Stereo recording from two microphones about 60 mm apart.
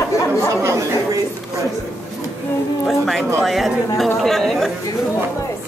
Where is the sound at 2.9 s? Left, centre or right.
Centre.